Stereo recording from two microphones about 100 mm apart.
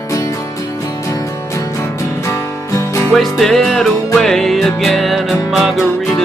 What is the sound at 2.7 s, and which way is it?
Music, 35° left (ahead or behind).